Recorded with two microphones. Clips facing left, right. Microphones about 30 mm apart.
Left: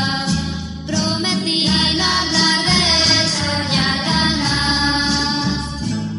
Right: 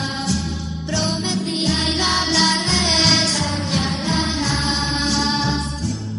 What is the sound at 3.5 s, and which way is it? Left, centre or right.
Music, left.